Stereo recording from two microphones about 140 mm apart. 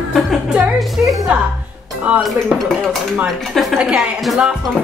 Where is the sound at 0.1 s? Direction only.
5° right (ahead or behind).